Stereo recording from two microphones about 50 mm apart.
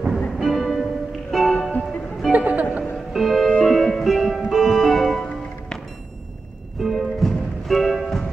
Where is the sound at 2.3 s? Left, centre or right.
Right.